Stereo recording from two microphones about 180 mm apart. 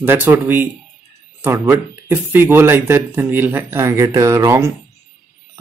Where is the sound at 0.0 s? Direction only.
10° right (ahead or behind).